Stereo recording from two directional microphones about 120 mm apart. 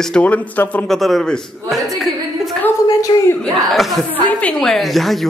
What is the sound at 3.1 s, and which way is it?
Speech, 35° left (ahead or behind).